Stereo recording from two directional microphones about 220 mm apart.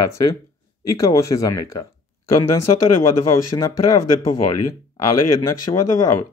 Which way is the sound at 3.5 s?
15° left (ahead or behind).